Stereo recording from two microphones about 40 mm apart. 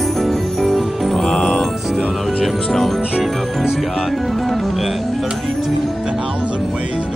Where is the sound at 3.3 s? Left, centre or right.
Centre.